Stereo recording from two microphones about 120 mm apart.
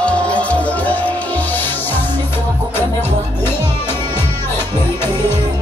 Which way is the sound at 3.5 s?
20° left (ahead or behind).